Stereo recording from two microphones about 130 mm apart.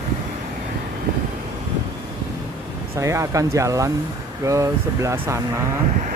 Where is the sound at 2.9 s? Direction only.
25° right (ahead or behind).